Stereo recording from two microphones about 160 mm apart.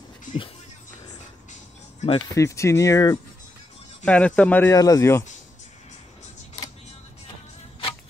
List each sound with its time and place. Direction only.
1.5 s music: 45° left (ahead or behind)
2.1 s speech: 20° left (ahead or behind)
4.0 s speech: 10° left (ahead or behind)
4.7 s speech: 20° left (ahead or behind)